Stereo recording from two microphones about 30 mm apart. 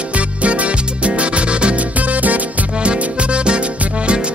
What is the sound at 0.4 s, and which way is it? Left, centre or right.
Music, right.